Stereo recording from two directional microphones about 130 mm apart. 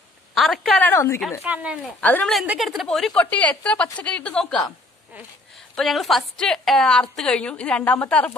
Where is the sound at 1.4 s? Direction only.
10° right (ahead or behind).